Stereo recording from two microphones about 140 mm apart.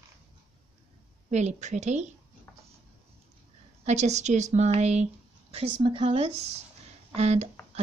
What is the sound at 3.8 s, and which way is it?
A woman's voice, 55° right (ahead or behind).